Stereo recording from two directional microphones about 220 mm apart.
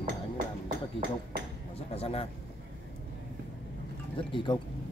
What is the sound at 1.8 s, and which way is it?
Speech, 25° left (ahead or behind).